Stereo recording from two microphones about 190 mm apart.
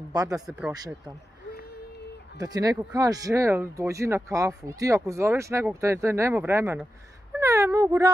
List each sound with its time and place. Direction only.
0.1 s speech: 20° right (ahead or behind)
0.5 s speech: 5° right (ahead or behind)
2.3 s speech: 20° right (ahead or behind)